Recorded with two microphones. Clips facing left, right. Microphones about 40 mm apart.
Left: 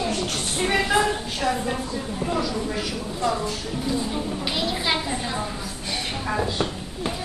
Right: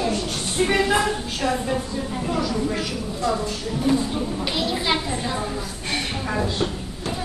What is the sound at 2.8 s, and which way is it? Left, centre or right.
A woman's voice, centre.